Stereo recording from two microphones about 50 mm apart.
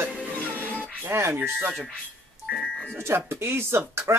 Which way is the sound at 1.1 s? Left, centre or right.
Right.